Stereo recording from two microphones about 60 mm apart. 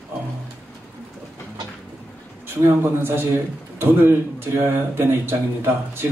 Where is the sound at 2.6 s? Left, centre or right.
Right.